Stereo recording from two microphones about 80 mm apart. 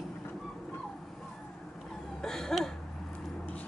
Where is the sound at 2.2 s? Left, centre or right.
Centre.